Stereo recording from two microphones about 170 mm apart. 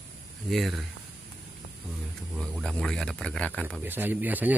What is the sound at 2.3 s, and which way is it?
Speech, centre (ahead or behind).